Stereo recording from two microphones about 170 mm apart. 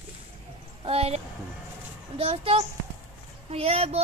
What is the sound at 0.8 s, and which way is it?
Speech, 35° right (ahead or behind).